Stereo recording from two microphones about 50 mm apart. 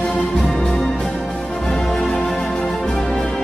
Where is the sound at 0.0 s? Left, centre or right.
Centre.